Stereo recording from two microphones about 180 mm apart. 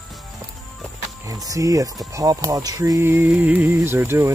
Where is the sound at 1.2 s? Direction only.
20° right (ahead or behind).